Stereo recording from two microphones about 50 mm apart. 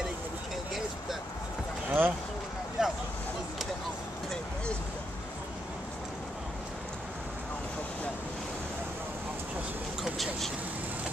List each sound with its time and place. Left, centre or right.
1.9 s speech: right
2.8 s vehicle: centre
10.1 s vehicle: centre